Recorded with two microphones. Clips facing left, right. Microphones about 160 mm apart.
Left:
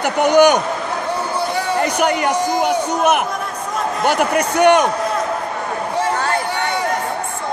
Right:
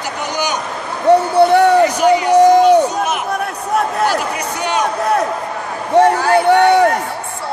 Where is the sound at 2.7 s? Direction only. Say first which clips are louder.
Right 4 dB; 60° left (ahead or behind).